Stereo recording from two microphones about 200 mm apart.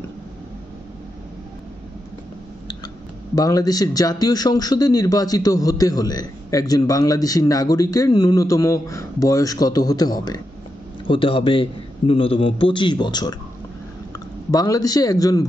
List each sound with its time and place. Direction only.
3.3 s a man's voice: 15° left (ahead or behind)